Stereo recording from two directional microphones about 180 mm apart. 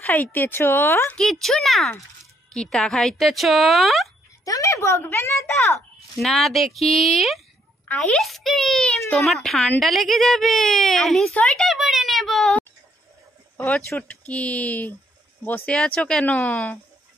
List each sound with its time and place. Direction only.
0.0 s speech: 10° left (ahead or behind)
4.5 s speech: 15° left (ahead or behind)
6.1 s speech: centre (ahead or behind)